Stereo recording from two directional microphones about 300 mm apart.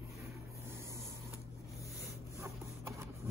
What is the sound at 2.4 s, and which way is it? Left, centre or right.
Printer, centre.